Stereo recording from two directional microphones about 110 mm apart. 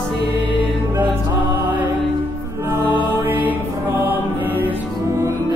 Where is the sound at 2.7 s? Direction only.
20° right (ahead or behind).